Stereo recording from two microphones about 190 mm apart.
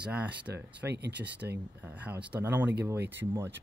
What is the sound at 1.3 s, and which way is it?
Speech, 65° right (ahead or behind).